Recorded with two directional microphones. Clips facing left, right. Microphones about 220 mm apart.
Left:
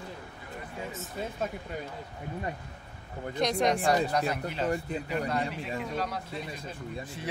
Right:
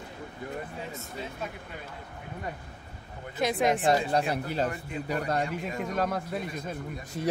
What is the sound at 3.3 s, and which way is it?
Speech, 5° right (ahead or behind).